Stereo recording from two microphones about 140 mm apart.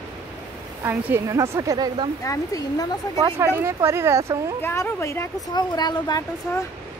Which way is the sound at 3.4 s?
20° right (ahead or behind).